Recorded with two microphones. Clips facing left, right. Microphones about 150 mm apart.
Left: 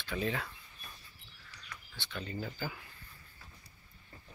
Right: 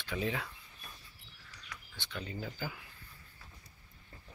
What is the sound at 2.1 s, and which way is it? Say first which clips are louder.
Speech: left 1 dB; 10° right (ahead or behind).